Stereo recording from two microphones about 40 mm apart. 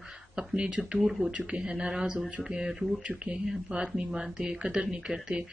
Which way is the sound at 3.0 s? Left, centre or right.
Right.